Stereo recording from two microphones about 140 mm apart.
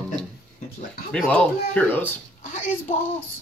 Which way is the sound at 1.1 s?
10° left (ahead or behind).